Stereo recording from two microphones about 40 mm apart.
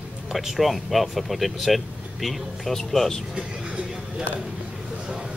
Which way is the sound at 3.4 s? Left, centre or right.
Right.